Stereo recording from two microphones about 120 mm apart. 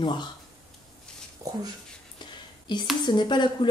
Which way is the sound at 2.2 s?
40° left (ahead or behind).